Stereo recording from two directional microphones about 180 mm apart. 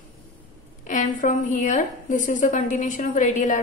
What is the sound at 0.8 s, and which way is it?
A woman's voice, 45° left (ahead or behind).